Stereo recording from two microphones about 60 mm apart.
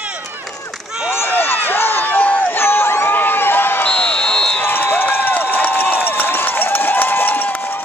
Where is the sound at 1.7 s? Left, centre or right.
Left.